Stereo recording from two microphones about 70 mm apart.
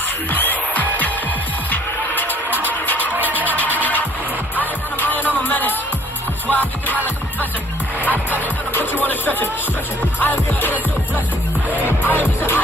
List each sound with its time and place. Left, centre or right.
0.3 s music: left
3.2 s music: right
3.4 s music: left
8.7 s music: left
11.8 s music: left